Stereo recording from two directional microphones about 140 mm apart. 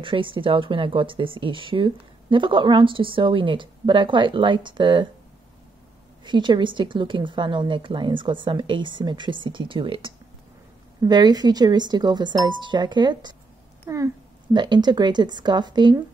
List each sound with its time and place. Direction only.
0.0 s speech: 40° right (ahead or behind)
6.2 s speech: 35° right (ahead or behind)